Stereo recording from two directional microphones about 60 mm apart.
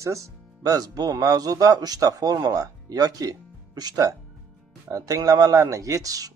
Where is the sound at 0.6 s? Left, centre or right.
Right.